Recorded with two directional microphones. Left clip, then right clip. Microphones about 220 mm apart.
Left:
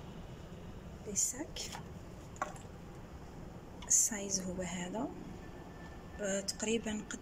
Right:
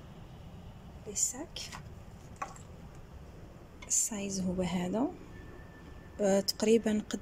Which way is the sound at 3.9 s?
Centre (ahead or behind).